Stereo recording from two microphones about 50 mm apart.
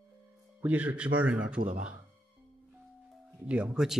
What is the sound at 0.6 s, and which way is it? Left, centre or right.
Speech, right.